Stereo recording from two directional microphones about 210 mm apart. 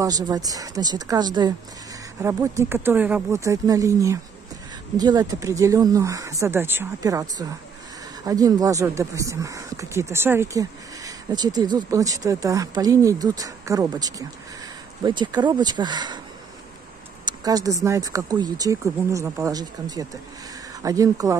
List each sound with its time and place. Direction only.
0.0 s speech: 20° right (ahead or behind)
17.2 s speech: 15° right (ahead or behind)